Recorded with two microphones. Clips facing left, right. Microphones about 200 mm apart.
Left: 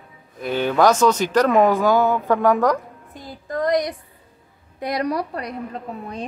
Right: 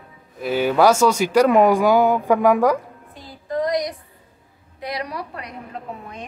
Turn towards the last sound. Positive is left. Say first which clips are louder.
# left 6 dB
turn(degrees=40)  # may be behind; listen again after turning